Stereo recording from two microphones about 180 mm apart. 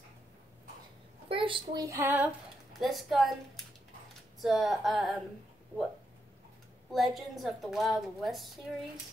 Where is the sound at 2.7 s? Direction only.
Centre (ahead or behind).